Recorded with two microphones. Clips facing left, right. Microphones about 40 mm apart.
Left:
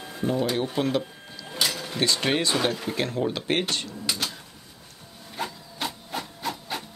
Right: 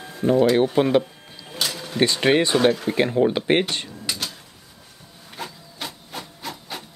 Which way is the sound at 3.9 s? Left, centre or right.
Centre.